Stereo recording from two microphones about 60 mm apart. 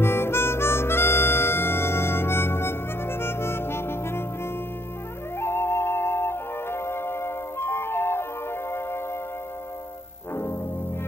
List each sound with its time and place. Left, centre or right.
0.0 s harmonica: left
5.4 s music: left